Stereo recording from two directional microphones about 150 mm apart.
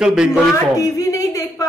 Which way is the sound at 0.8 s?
20° left (ahead or behind).